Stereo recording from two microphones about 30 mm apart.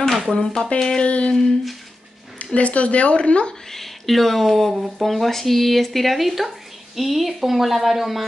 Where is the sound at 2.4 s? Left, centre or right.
Left.